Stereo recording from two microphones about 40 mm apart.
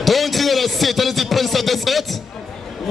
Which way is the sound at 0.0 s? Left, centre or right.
Centre.